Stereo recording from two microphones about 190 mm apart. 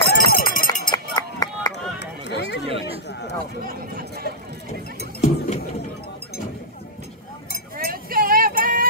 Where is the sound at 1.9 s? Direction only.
65° left (ahead or behind).